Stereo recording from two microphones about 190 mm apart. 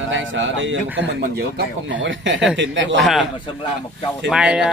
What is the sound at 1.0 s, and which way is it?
Speech, 60° right (ahead or behind).